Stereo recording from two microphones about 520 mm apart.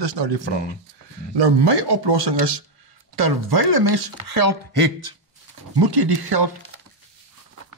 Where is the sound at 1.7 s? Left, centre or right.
Right.